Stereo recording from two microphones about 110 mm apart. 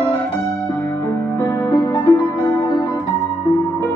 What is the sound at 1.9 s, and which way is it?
Music, 30° left (ahead or behind).